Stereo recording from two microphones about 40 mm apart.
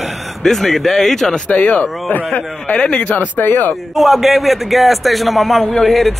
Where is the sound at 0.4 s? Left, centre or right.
Centre.